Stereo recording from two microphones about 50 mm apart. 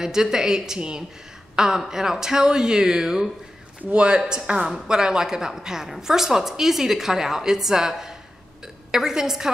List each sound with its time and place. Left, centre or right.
0.0 s a woman's voice: centre